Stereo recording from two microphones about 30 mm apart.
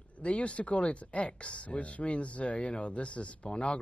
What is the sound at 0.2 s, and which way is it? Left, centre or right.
Speech, left.